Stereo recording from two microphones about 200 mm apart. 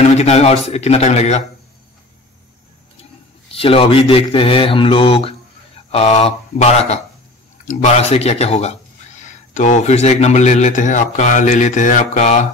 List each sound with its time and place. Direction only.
0.2 s a man's voice: 30° left (ahead or behind)
3.5 s a man's voice: 30° left (ahead or behind)